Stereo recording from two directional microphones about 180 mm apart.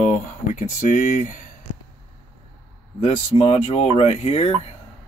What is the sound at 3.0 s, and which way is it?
Speech, 30° left (ahead or behind).